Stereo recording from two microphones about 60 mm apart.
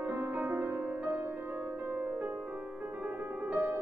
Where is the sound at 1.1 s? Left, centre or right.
Right.